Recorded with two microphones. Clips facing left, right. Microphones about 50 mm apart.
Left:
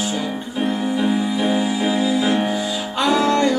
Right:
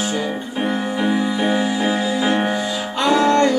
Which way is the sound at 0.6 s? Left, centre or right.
Centre.